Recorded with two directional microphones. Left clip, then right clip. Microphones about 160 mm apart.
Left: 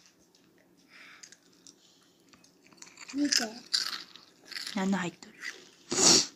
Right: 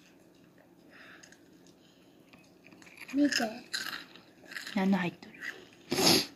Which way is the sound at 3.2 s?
35° right (ahead or behind).